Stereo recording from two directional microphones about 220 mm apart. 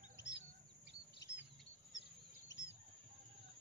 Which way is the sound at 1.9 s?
55° left (ahead or behind).